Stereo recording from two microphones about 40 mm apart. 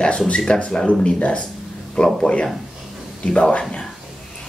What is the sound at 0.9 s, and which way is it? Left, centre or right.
Speech, left.